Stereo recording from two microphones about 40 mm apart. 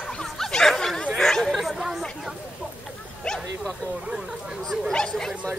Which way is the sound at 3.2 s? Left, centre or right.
Centre.